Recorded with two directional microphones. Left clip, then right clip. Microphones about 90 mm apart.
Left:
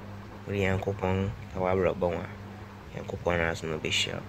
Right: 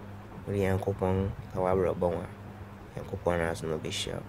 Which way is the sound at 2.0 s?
40° right (ahead or behind).